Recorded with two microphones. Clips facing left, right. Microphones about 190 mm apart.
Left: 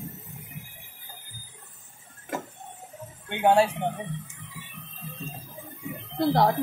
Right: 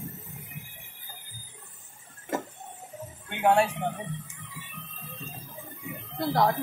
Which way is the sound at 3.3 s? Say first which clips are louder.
Left 2 dB; 30° left (ahead or behind).